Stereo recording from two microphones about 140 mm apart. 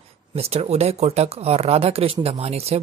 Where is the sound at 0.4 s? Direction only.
45° right (ahead or behind).